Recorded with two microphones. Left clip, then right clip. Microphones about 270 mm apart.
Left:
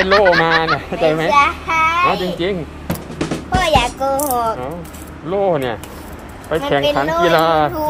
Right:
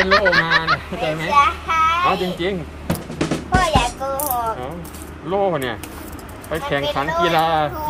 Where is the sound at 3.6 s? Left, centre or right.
Left.